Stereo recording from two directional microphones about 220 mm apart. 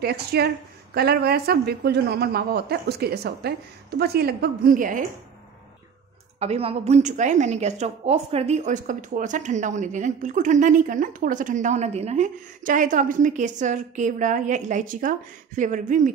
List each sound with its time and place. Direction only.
0.0 s a woman's voice: 45° right (ahead or behind)
6.4 s a woman's voice: 25° right (ahead or behind)